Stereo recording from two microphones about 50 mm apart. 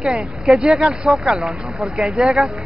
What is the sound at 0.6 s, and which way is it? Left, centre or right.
Speech, centre.